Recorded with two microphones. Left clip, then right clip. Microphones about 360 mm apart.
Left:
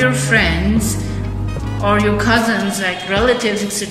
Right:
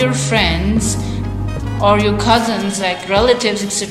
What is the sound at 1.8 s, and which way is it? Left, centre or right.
Speech, centre.